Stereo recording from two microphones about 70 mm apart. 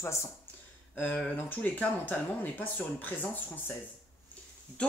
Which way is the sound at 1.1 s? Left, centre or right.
Left.